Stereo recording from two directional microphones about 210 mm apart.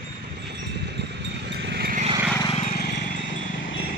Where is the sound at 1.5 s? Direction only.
50° right (ahead or behind).